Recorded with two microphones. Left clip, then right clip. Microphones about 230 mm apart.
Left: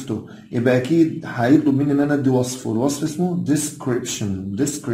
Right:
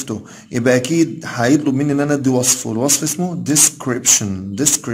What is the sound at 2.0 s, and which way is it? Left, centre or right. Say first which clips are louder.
Speech: right 2 dB; right.